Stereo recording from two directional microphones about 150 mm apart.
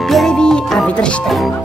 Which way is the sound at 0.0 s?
Centre (ahead or behind).